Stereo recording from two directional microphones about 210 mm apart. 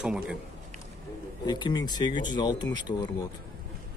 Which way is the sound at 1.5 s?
20° left (ahead or behind).